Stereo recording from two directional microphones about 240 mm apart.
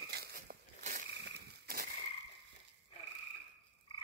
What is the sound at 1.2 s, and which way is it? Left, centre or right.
Frog, right.